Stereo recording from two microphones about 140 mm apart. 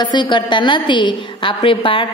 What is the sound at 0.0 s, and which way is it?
A woman's voice, 30° left (ahead or behind).